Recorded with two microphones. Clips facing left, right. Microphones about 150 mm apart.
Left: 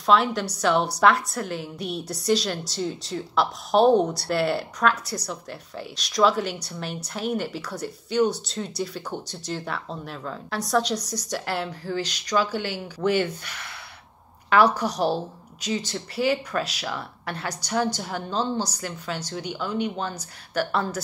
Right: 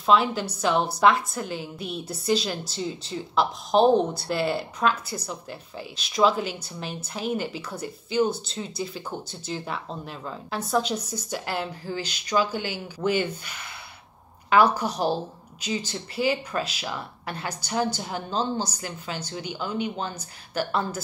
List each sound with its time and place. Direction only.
0.0 s speech: centre (ahead or behind)
11.0 s a woman's voice: 75° left (ahead or behind)
11.2 s speech: centre (ahead or behind)
14.8 s speech: centre (ahead or behind)